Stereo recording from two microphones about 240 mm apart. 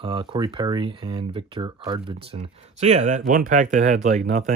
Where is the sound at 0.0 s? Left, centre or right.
Right.